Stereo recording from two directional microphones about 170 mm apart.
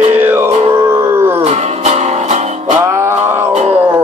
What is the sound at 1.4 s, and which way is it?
Music, 40° right (ahead or behind).